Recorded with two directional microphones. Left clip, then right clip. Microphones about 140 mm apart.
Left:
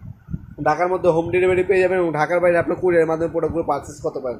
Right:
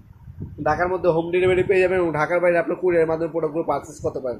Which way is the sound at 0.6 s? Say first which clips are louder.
Left 2 dB; 15° left (ahead or behind).